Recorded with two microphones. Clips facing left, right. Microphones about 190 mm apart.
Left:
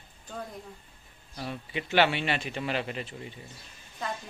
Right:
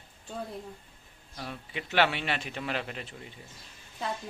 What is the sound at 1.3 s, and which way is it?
A man's voice, centre (ahead or behind).